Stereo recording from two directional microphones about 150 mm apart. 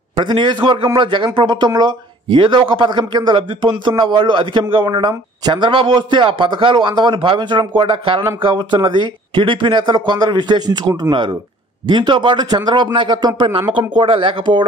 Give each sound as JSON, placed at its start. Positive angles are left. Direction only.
{"t": 0.1, "sound": "a man's voice", "side_deg": -30}